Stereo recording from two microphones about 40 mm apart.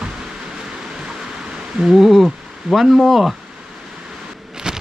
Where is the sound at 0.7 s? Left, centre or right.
Centre.